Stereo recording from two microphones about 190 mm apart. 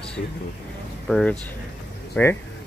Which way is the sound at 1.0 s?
5° left (ahead or behind).